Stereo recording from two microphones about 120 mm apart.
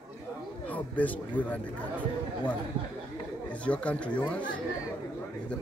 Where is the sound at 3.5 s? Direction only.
10° left (ahead or behind).